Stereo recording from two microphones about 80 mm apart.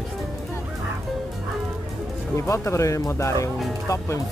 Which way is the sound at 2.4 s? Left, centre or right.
Left.